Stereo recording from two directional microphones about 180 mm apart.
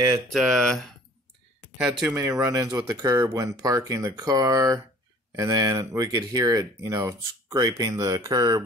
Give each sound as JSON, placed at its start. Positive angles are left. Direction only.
{"t": 0.3, "sound": "speech", "side_deg": 0}
{"t": 2.4, "sound": "speech", "side_deg": -20}